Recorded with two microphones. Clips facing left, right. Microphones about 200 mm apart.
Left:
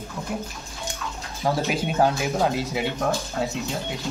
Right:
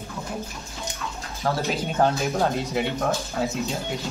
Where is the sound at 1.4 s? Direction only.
10° left (ahead or behind).